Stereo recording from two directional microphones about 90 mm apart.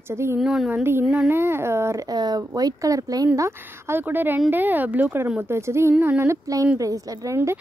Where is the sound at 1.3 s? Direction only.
30° right (ahead or behind).